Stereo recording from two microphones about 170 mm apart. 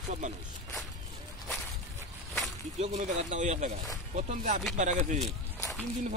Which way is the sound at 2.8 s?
40° right (ahead or behind).